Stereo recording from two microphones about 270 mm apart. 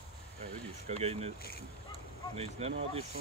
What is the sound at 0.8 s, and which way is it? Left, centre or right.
Speech, right.